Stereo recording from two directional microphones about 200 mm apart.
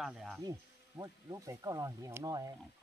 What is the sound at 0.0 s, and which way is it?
Insect, centre (ahead or behind).